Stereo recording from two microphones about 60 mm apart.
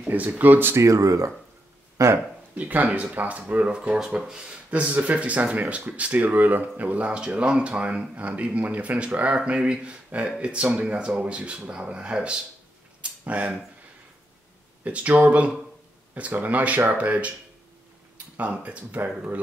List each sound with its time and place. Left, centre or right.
0.1 s speech: right
0.7 s speech: right
2.5 s speech: right
14.8 s speech: right